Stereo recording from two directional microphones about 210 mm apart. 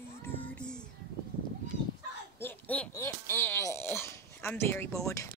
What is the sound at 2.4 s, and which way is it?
Speech, 10° left (ahead or behind).